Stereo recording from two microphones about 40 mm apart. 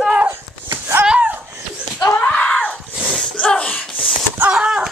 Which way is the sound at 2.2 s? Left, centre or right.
Left.